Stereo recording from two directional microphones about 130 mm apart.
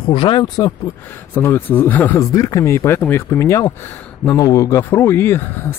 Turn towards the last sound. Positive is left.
turn(degrees=15)  # may be behind; listen again after turning